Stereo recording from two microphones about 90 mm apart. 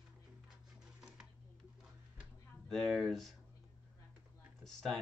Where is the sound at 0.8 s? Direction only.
5° right (ahead or behind).